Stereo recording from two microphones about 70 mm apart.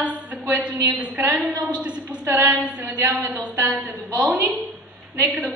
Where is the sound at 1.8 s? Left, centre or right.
Centre.